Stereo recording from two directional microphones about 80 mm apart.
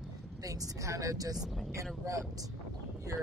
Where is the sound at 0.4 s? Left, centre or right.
Right.